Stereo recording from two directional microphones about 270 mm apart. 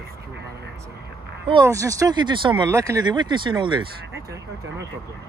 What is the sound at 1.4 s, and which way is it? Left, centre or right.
Speech, centre.